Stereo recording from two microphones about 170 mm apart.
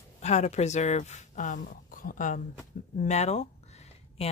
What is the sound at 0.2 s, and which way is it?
Speech, 40° left (ahead or behind).